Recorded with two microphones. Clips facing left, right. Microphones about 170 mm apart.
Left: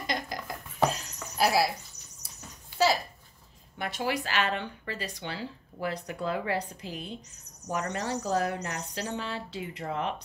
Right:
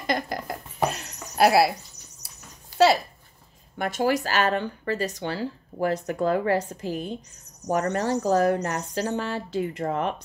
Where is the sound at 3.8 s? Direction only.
45° right (ahead or behind).